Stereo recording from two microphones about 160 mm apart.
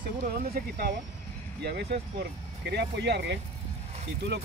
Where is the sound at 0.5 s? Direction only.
75° right (ahead or behind).